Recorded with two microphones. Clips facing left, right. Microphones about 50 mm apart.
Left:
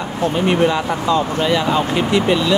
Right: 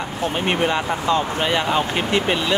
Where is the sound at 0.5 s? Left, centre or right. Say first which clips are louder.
Left 3 dB; right.